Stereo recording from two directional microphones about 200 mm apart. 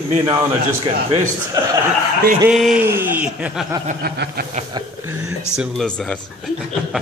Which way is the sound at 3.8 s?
55° right (ahead or behind).